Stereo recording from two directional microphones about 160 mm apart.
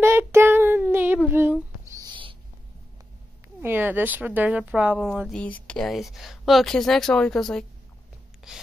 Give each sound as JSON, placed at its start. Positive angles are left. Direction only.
{"t": 0.0, "sound": "child singing", "side_deg": -15}
{"t": 1.3, "sound": "a sound", "side_deg": -15}
{"t": 3.6, "sound": "speech", "side_deg": -10}
{"t": 5.3, "sound": "speech", "side_deg": 5}